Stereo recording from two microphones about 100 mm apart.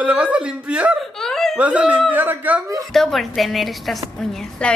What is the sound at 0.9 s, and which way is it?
Giggle, 5° left (ahead or behind).